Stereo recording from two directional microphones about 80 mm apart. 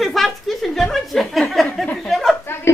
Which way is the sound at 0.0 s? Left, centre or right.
Centre.